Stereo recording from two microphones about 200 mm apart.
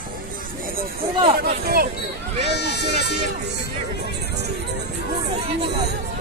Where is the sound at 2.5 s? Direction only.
55° left (ahead or behind).